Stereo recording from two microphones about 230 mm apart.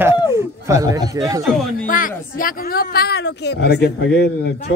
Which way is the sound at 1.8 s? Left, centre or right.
Left.